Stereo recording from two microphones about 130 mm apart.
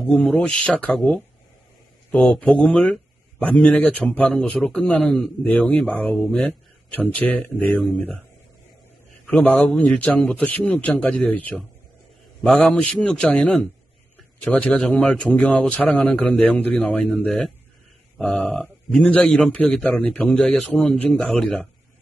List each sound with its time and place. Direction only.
0.0 s speech: 15° left (ahead or behind)
2.3 s speech: 10° left (ahead or behind)
9.3 s speech: 10° left (ahead or behind)